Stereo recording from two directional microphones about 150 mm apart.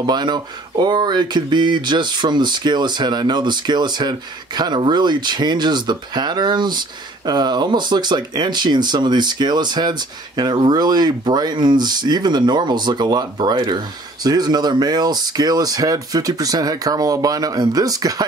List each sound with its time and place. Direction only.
0.0 s speech: 30° right (ahead or behind)